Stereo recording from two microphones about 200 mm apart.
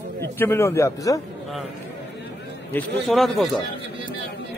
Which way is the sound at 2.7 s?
5° left (ahead or behind).